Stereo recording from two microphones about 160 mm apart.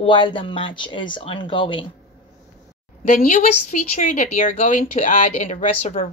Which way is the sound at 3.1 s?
60° left (ahead or behind).